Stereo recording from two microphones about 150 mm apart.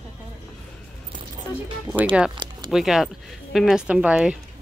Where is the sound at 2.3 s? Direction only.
30° right (ahead or behind).